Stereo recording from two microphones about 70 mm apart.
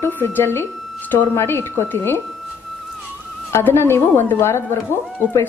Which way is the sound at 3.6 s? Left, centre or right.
Left.